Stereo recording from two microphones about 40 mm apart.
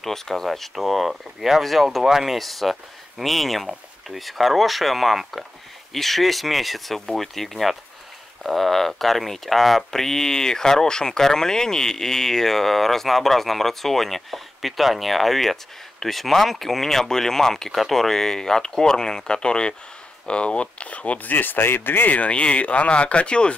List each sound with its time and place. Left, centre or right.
0.0 s speech: centre; by 21.3 s left
21.3 s speech: left
22.1 s speech: left